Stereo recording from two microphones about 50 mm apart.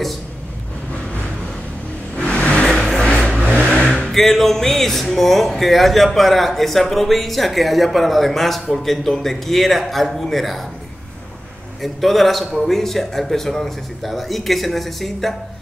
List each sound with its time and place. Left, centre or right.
2.1 s vehicle: left
2.6 s vehicle: centre
3.1 s vehicle: centre
3.9 s music: centre
5.1 s speech: centre
11.8 s speech: centre